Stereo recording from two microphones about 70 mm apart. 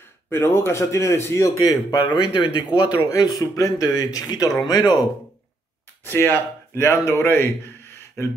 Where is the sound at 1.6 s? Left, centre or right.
Left.